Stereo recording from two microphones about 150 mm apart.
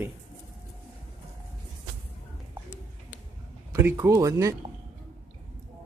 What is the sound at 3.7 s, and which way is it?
Speech, 20° right (ahead or behind).